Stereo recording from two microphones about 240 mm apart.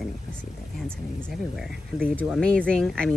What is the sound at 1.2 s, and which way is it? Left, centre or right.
Speech, centre.